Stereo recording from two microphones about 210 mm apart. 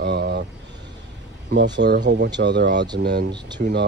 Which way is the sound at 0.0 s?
50° right (ahead or behind).